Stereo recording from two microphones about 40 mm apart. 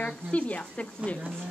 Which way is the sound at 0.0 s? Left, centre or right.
Left.